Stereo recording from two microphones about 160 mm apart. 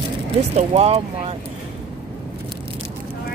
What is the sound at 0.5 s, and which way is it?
Speech, 40° right (ahead or behind).